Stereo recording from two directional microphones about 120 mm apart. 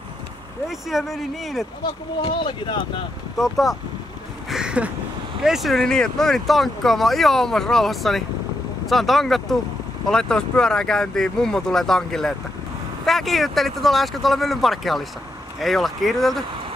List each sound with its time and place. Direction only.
0.7 s speech: centre (ahead or behind)
1.8 s speech: 40° left (ahead or behind)
3.3 s speech: centre (ahead or behind)
4.5 s a sound: 5° right (ahead or behind)
5.4 s speech: centre (ahead or behind)